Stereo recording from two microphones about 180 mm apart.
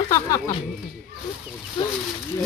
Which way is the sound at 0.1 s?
20° left (ahead or behind).